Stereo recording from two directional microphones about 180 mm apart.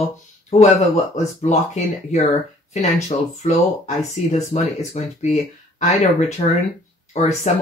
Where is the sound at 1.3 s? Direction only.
40° left (ahead or behind).